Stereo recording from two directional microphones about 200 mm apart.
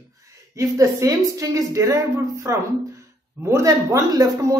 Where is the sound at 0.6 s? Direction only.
15° right (ahead or behind).